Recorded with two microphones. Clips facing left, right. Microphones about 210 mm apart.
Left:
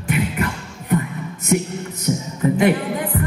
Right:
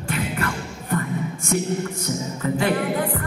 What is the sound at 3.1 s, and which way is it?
Music, 25° left (ahead or behind).